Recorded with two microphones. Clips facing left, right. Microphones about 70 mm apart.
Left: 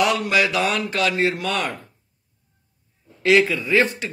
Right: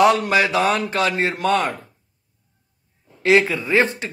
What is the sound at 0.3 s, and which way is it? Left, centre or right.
Speech, right.